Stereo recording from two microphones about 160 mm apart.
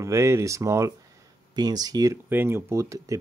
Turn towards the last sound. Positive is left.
turn(degrees=-20)  # may be behind; listen again after turning